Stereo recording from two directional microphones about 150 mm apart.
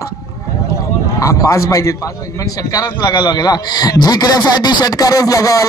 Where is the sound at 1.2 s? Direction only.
20° left (ahead or behind).